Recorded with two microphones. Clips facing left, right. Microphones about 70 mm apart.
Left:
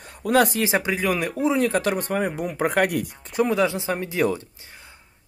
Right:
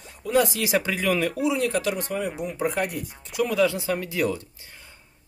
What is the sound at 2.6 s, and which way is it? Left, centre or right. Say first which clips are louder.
Speech: left 5 dB; left.